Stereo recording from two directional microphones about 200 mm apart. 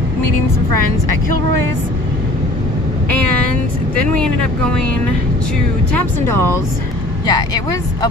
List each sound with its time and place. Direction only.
3.9 s speech: 5° left (ahead or behind)
6.2 s speech: 10° left (ahead or behind)